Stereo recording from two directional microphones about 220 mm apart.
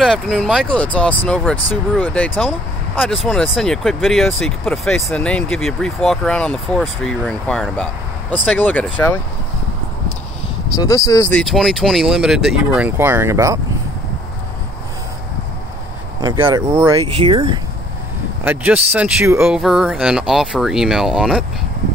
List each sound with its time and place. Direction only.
0.0 s speech: 5° left (ahead or behind)
10.7 s speech: 15° left (ahead or behind)
11.4 s speech: centre (ahead or behind)
16.2 s speech: 15° right (ahead or behind)
18.4 s speech: 10° right (ahead or behind)